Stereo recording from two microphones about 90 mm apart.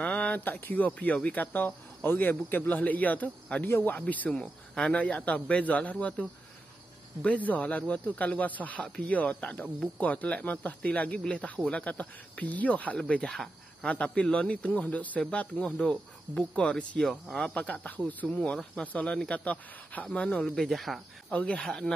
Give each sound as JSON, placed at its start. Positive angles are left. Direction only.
{"t": 0.0, "sound": "speech", "side_deg": 15}
{"t": 7.2, "sound": "speech", "side_deg": 15}
{"t": 21.5, "sound": "speech", "side_deg": 10}